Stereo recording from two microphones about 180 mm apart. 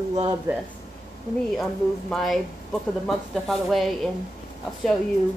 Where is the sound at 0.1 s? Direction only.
30° right (ahead or behind).